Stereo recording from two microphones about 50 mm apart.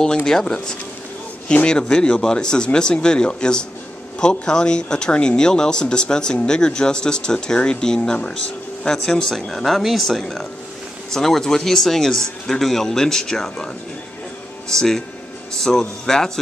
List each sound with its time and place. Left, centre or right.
0.3 s speech: centre
14.7 s speech: centre